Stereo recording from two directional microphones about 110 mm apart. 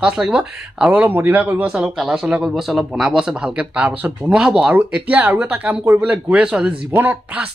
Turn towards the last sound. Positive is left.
turn(degrees=-15)  # may be behind; listen again after turning